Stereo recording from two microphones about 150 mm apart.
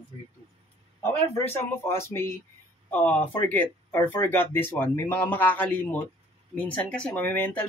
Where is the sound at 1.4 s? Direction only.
15° left (ahead or behind).